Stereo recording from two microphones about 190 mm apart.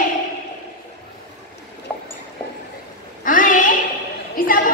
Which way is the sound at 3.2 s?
45° left (ahead or behind).